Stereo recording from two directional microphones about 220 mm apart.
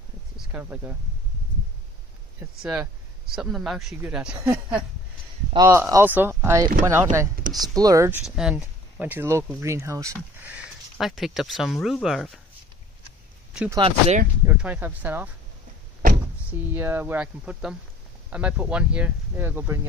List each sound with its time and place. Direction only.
0.5 s speech: 10° right (ahead or behind)
2.6 s speech: 5° right (ahead or behind)
8.4 s speech: 5° right (ahead or behind)
13.5 s a sound: 5° right (ahead or behind)
13.7 s speech: 25° right (ahead or behind)
14.4 s speech: 10° right (ahead or behind)
16.7 s speech: 10° right (ahead or behind)